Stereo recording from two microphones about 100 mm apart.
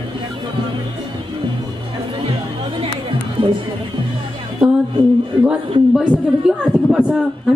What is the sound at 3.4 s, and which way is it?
Speech, 60° right (ahead or behind).